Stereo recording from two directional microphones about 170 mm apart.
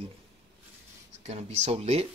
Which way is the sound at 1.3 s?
35° right (ahead or behind).